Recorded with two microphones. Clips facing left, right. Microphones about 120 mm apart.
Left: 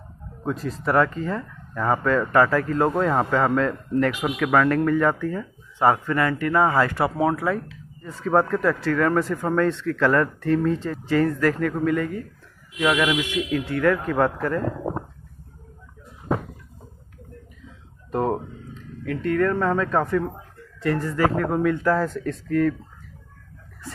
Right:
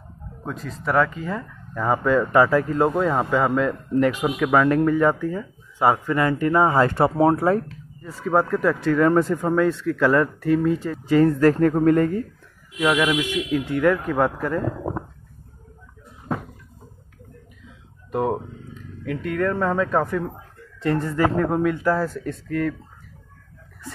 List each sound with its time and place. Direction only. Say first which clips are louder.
0.5 s speech: left 2 dB; centre (ahead or behind); by 2.9 s 20° right (ahead or behind)
2.9 s speech: even; 5° right (ahead or behind); by 7.7 s 35° right (ahead or behind)
8.0 s speech: even; 5° right (ahead or behind); by 9.5 s 20° right (ahead or behind)
9.5 s speech: right 2 dB; 10° right (ahead or behind)
11.1 s speech: right 5 dB; 25° right (ahead or behind); by 12.2 s 45° right (ahead or behind)
12.7 s speech: right 1 dB; 10° right (ahead or behind)
18.1 s speech: even; 5° right (ahead or behind)
20.8 s speech: right 1 dB; 25° right (ahead or behind)
21.7 s speech: even; 10° right (ahead or behind)